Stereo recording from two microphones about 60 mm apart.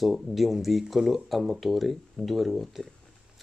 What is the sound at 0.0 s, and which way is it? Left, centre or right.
A man's voice, centre.